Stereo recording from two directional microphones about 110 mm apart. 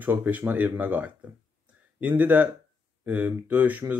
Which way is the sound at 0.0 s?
15° right (ahead or behind).